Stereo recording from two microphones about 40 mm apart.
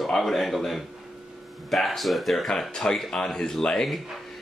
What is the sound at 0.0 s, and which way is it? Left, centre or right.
A man's voice, centre.